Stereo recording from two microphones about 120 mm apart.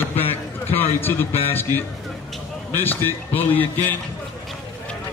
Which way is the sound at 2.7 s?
15° left (ahead or behind).